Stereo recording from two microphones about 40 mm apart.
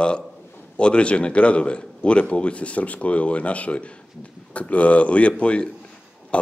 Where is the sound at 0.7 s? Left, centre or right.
Left.